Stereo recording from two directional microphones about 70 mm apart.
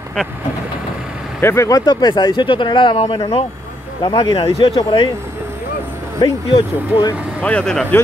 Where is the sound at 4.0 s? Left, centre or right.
Left.